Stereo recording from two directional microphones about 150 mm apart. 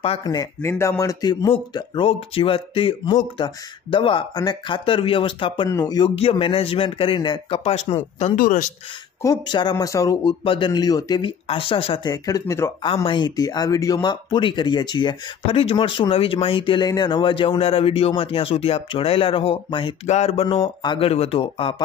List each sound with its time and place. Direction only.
0.2 s speech: 25° left (ahead or behind)
2.0 s speech: 40° left (ahead or behind)
8.4 s speech: 70° left (ahead or behind)
9.2 s speech: 25° left (ahead or behind)
10.4 s speech: 35° left (ahead or behind)
12.1 s speech: 25° left (ahead or behind)
12.8 s speech: 35° left (ahead or behind)